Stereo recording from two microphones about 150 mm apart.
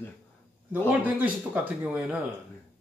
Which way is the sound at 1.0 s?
10° right (ahead or behind).